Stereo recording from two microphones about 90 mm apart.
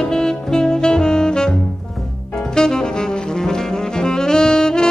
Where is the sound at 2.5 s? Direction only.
5° left (ahead or behind).